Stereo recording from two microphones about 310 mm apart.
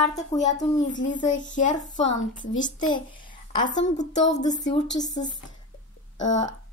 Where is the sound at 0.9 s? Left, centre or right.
Left.